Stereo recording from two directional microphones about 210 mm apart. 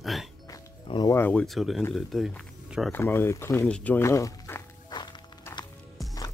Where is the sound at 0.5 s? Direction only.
20° left (ahead or behind); by 1.8 s centre (ahead or behind).